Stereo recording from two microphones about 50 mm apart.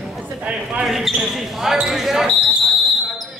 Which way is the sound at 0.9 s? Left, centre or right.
Centre.